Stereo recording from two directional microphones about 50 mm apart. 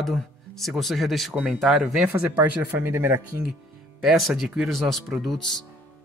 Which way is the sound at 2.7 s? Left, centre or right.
Right.